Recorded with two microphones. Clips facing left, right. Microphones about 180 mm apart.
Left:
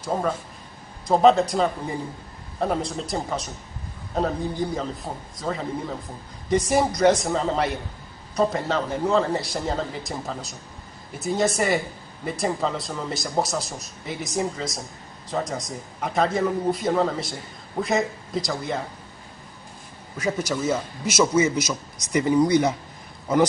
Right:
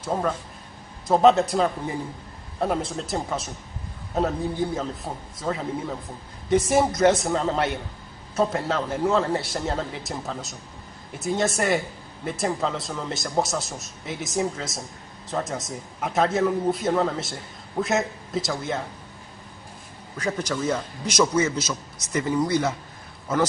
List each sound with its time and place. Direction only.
0.0 s a man's voice: centre (ahead or behind)
20.2 s a man's voice: 10° left (ahead or behind)